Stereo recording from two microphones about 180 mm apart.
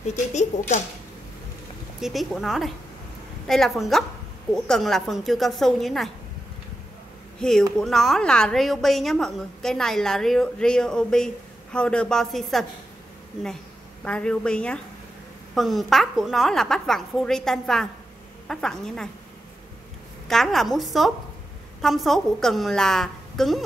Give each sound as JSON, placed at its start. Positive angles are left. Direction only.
{"t": 0.1, "sound": "speech", "side_deg": 40}
{"t": 2.0, "sound": "a woman's voice", "side_deg": 0}
{"t": 7.3, "sound": "a woman's voice", "side_deg": 5}
{"t": 14.0, "sound": "a woman's voice", "side_deg": 5}
{"t": 20.2, "sound": "a woman's voice", "side_deg": 0}